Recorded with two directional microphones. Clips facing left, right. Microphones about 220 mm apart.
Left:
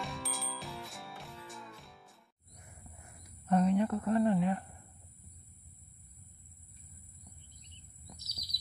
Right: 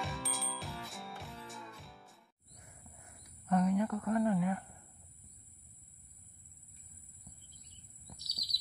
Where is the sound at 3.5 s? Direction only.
30° left (ahead or behind).